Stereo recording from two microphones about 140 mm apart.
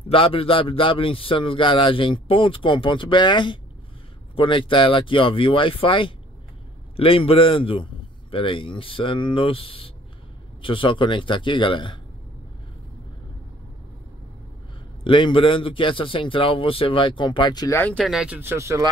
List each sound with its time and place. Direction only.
0.1 s a man's voice: 40° left (ahead or behind)
15.0 s a man's voice: 35° left (ahead or behind)
17.7 s speech: 10° left (ahead or behind)
18.0 s speech: 5° right (ahead or behind); by 18.9 s 20° right (ahead or behind)